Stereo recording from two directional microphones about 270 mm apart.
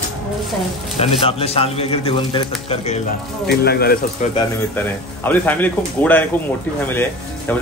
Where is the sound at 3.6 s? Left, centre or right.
Left.